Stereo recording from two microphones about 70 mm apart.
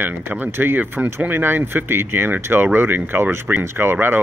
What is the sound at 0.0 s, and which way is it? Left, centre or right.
Speech, right.